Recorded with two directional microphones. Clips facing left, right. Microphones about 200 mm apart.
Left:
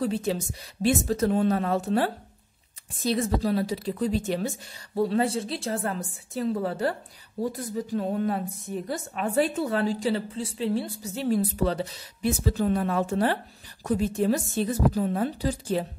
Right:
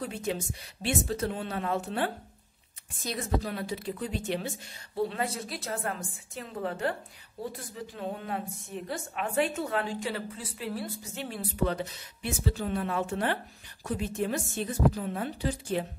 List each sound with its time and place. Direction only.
0.0 s a woman's voice: 35° left (ahead or behind)
3.1 s a woman's voice: 35° left (ahead or behind)
11.2 s a woman's voice: 40° left (ahead or behind)